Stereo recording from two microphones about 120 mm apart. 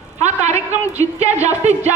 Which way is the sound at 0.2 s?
70° right (ahead or behind).